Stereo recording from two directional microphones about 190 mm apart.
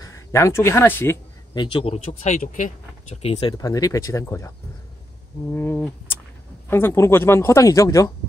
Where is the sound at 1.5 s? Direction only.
25° left (ahead or behind).